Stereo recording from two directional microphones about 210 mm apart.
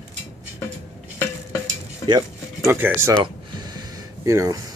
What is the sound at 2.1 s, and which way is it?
Speech, 15° right (ahead or behind).